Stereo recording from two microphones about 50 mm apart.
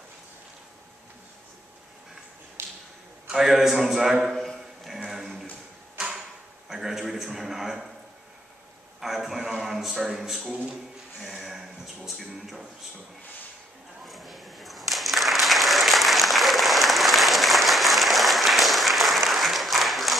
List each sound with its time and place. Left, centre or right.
2.6 s a sound: right
3.3 s a man's voice: centre
5.9 s tick-tock: centre
6.7 s a man's voice: centre
9.0 s a man's voice: centre
10.7 s a sound: centre
14.0 s applause: centre